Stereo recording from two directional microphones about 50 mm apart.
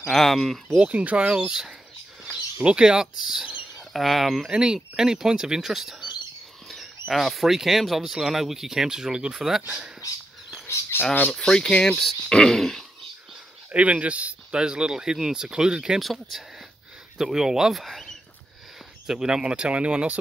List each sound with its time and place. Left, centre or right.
0.0 s speech: centre
0.7 s speech: right; by 4.5 s centre
4.5 s speech: centre
10.9 s speech: left
11.3 s speech: centre
13.7 s speech: right
14.6 s speech: centre
16.0 s speech: centre
19.0 s speech: centre